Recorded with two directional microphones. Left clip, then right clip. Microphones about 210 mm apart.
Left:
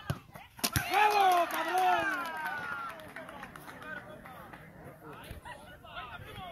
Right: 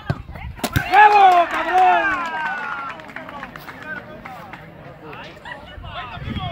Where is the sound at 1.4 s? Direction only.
35° left (ahead or behind).